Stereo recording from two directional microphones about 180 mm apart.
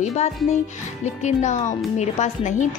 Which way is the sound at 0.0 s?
35° left (ahead or behind).